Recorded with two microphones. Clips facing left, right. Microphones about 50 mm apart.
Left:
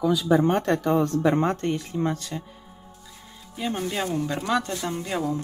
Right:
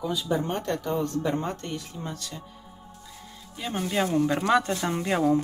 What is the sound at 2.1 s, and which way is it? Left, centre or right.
Speech, left.